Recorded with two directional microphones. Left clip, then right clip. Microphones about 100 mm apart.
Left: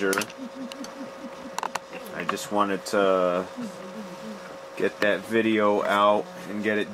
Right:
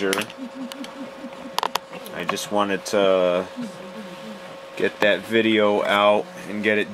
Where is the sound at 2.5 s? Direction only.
30° right (ahead or behind).